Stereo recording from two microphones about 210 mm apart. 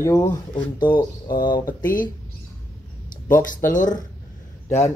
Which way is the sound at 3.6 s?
10° left (ahead or behind).